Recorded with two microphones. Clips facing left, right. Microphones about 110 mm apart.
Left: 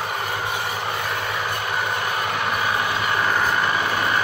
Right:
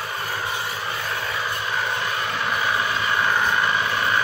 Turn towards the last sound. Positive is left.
turn(degrees=15)  # may be behind; listen again after turning